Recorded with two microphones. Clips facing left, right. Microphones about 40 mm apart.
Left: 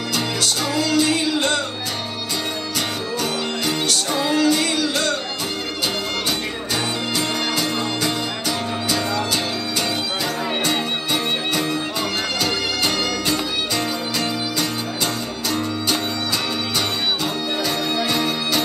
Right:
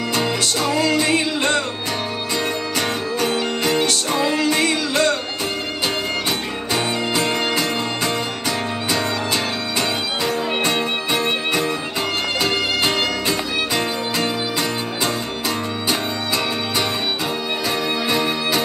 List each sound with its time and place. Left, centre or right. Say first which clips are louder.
0.1 s music: right 1 dB; right
3.2 s music: right 3 dB; right
7.2 s music: right 2 dB; right
12.4 s music: right 4 dB; right
18.0 s music: right 1 dB; right